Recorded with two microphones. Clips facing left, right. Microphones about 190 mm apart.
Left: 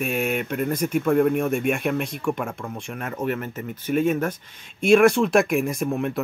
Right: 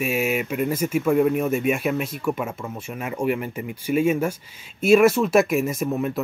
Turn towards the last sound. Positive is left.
turn(degrees=0)  # may be behind; listen again after turning